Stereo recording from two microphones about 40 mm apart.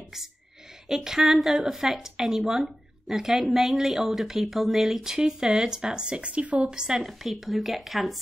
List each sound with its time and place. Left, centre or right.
0.8 s speech: centre; by 6.6 s right
6.6 s a woman's voice: centre
7.0 s speech: centre